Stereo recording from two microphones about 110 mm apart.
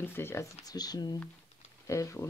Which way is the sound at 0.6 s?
35° left (ahead or behind).